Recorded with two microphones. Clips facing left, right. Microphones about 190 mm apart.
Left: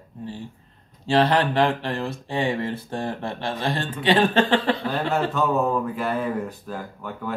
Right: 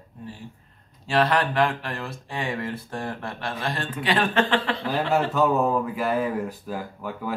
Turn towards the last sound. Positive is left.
turn(degrees=-5)  # may be behind; listen again after turning